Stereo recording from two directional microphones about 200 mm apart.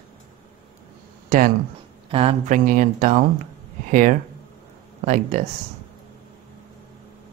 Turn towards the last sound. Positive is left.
turn(degrees=-35)  # may be behind; listen again after turning